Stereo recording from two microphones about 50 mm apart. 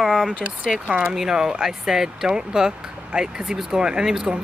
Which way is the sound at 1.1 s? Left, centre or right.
Centre.